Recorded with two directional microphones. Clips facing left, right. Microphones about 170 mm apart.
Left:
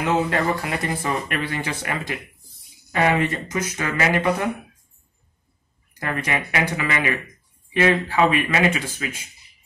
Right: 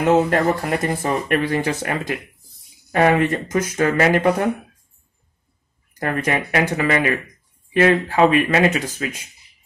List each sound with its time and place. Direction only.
0.3 s speech: 45° right (ahead or behind)
5.9 s speech: 50° right (ahead or behind)